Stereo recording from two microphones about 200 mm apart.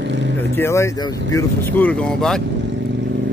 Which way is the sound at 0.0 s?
60° right (ahead or behind).